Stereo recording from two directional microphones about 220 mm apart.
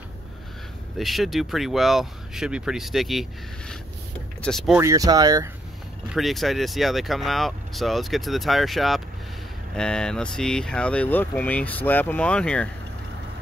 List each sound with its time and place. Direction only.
0.9 s speech: centre (ahead or behind)
4.7 s speech: 15° right (ahead or behind)
6.0 s speech: centre (ahead or behind)